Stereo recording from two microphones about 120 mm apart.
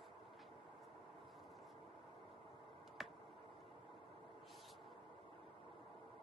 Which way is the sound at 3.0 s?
Centre (ahead or behind).